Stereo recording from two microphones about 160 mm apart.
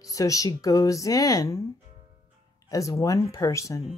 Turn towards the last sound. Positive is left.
turn(degrees=20)  # may be behind; listen again after turning